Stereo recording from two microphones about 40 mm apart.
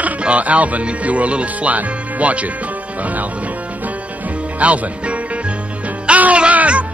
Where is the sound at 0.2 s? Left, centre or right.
Right.